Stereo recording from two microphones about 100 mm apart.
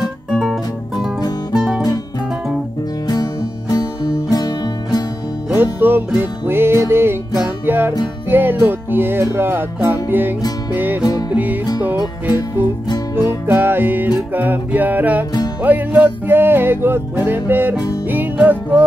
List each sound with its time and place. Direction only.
0.3 s music: centre (ahead or behind)
3.1 s music: 40° left (ahead or behind)
5.6 s music: 20° right (ahead or behind)